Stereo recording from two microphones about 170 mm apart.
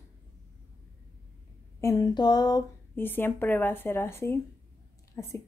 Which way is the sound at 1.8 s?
20° left (ahead or behind).